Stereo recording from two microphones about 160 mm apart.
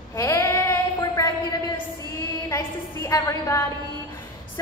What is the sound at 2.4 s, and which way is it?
A woman's voice, 20° left (ahead or behind).